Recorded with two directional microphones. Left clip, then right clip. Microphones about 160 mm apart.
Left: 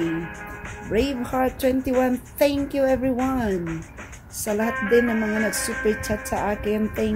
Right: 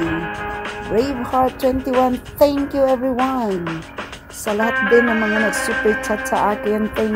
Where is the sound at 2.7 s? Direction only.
10° right (ahead or behind).